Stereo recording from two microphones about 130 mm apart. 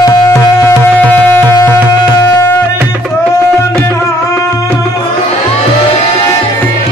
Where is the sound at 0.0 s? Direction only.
25° left (ahead or behind).